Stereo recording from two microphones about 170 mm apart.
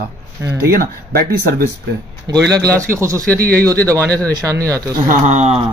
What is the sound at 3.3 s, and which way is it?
Speech, 60° right (ahead or behind).